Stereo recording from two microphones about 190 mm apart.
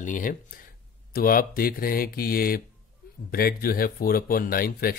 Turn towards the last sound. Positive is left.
turn(degrees=50)  # may be behind; listen again after turning